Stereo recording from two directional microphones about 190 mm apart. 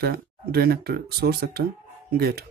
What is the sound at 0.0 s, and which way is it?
Speech, 55° right (ahead or behind).